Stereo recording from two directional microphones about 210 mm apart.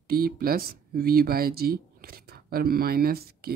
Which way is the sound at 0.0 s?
45° right (ahead or behind).